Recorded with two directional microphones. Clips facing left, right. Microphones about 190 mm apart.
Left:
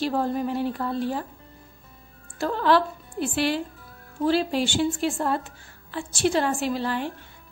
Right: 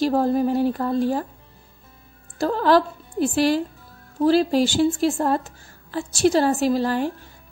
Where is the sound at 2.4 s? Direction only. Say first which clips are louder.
Right 3 dB; 40° right (ahead or behind).